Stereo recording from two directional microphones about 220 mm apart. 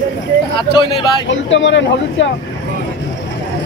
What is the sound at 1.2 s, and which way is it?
Speech, 55° left (ahead or behind).